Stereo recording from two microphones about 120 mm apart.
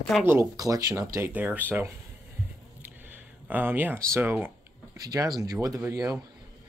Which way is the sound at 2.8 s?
15° right (ahead or behind).